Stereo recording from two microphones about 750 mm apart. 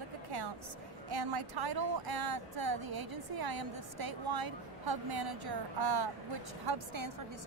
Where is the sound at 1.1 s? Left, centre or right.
Right.